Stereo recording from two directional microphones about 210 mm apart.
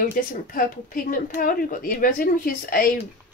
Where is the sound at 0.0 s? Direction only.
40° left (ahead or behind).